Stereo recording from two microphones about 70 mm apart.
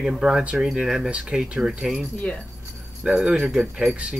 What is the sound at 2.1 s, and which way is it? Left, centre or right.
Speech, centre.